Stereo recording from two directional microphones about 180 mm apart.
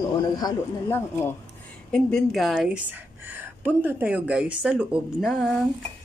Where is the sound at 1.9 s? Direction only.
5° left (ahead or behind).